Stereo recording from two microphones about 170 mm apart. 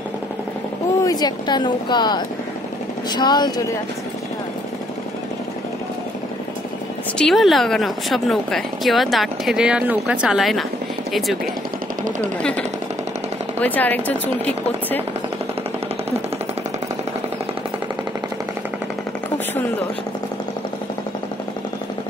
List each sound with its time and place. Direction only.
1.0 s speech: 25° left (ahead or behind)
7.2 s speech: centre (ahead or behind)
12.2 s speech: 5° left (ahead or behind)